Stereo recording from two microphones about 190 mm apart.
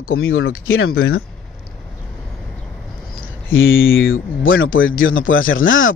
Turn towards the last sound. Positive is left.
turn(degrees=90)